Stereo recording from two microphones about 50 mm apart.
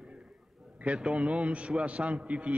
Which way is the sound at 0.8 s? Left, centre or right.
Right.